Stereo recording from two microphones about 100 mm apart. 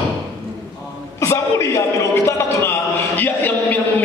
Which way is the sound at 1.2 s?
30° left (ahead or behind).